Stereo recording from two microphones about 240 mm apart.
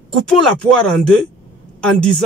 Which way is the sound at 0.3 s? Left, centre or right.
Centre.